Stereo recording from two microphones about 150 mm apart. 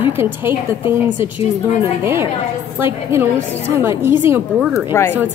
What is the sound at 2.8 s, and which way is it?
A woman's voice, 15° right (ahead or behind).